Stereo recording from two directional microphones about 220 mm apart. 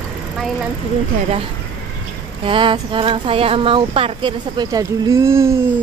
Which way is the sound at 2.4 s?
25° right (ahead or behind).